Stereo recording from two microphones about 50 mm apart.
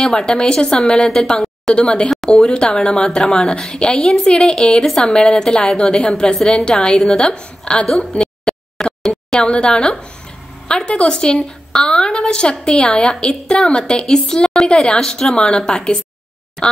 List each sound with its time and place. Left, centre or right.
0.0 s a woman's voice: centre
8.0 s a sound: centre
9.0 s a woman's voice: centre